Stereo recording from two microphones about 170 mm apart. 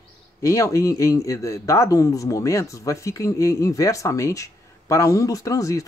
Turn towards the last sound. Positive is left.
turn(degrees=20)  # may be behind; listen again after turning